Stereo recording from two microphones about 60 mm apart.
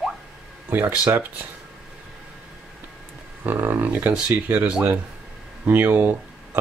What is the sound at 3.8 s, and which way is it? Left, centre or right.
Speech, right.